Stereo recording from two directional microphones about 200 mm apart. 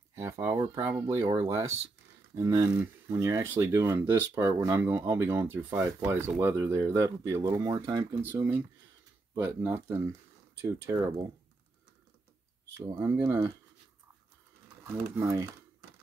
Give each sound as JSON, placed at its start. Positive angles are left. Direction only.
{"t": 0.1, "sound": "speech", "side_deg": -15}
{"t": 2.3, "sound": "speech", "side_deg": -15}
{"t": 12.7, "sound": "speech", "side_deg": -15}
{"t": 14.9, "sound": "speech", "side_deg": -15}